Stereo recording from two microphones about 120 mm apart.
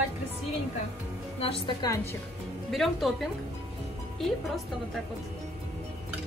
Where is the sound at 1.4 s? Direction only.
50° left (ahead or behind).